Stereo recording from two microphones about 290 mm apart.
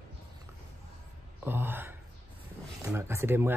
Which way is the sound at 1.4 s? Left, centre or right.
Centre.